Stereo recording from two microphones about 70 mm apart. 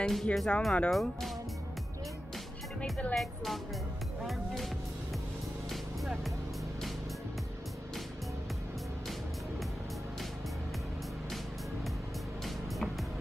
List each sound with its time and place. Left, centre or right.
0.0 s speech: centre
2.8 s speech: centre
3.2 s speech: centre
5.7 s music: centre
12.4 s music: centre